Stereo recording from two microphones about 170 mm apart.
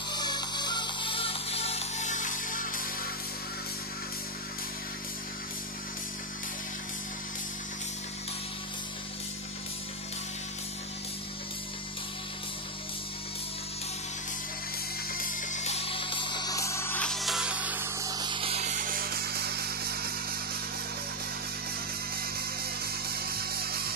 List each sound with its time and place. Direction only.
0.1 s music: 25° left (ahead or behind); by 2.8 s 50° left (ahead or behind)
15.1 s music: 50° left (ahead or behind); by 20.3 s 65° right (ahead or behind)
22.8 s music: 65° right (ahead or behind)